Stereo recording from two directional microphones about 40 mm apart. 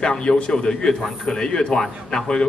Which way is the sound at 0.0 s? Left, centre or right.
Left.